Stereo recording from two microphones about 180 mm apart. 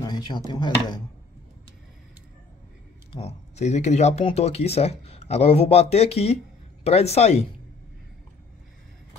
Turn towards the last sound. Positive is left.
turn(degrees=35)  # may be behind; listen again after turning